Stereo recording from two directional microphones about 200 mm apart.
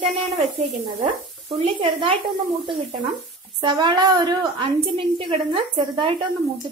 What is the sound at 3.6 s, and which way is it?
A woman's voice, 20° right (ahead or behind).